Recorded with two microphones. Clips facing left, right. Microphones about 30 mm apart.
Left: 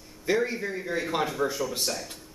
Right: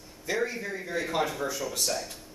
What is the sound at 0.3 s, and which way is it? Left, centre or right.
A man's voice, centre.